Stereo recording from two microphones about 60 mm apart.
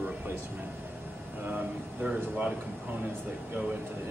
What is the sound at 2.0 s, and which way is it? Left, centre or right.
Speech, centre.